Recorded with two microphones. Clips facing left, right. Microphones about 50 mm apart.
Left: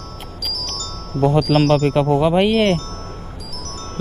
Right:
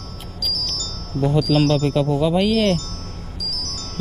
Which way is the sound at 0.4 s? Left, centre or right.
Left.